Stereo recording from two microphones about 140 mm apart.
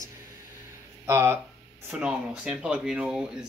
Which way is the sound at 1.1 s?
15° right (ahead or behind).